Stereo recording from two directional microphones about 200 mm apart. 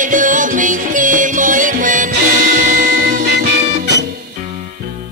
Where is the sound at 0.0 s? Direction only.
40° right (ahead or behind).